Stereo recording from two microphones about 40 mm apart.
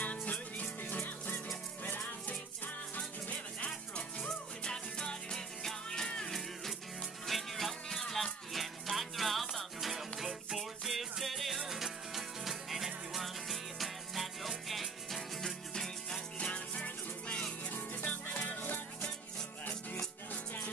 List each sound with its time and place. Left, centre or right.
0.0 s music: left
3.0 s music: left
4.6 s music: centre
7.2 s music: centre
8.5 s music: centre
16.5 s music: left
17.6 s music: left